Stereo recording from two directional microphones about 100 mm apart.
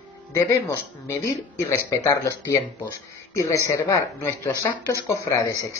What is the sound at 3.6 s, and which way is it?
Speech, 30° left (ahead or behind).